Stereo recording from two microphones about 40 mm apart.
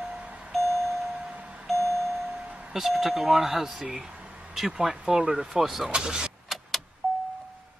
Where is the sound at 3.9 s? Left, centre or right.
Right.